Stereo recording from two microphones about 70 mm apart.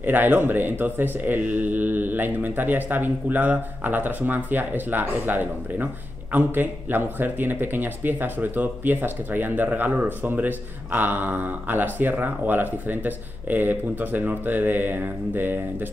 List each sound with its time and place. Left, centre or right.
0.0 s speech: right